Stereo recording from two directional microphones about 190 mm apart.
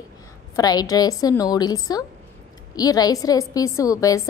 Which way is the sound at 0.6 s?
20° left (ahead or behind).